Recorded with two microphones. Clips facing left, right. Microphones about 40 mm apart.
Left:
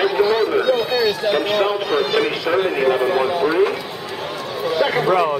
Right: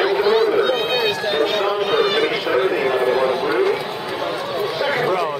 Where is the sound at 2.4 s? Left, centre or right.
Centre.